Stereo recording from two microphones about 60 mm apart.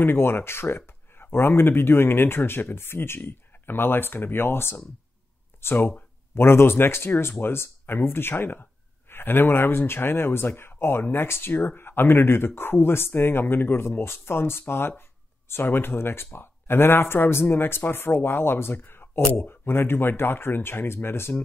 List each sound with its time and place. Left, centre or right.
0.0 s speech: left